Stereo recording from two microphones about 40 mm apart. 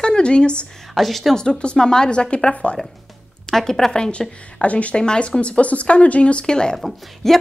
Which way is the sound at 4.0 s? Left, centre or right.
Left.